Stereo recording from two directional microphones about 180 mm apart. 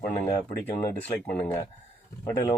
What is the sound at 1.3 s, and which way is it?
Speech, 10° left (ahead or behind).